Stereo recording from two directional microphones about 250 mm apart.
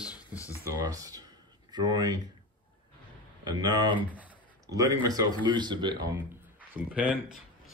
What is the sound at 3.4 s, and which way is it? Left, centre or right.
Speech, centre.